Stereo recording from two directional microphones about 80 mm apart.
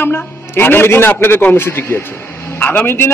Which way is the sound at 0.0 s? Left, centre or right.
Left.